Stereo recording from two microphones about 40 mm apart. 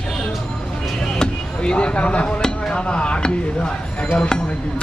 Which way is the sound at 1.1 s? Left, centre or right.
Left.